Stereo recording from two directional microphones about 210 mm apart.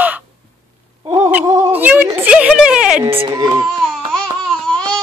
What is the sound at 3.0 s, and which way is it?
Speech, 25° right (ahead or behind).